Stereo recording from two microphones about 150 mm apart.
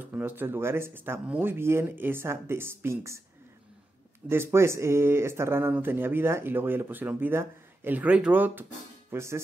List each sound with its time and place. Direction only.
0.0 s speech: 15° right (ahead or behind)
4.3 s speech: 15° right (ahead or behind)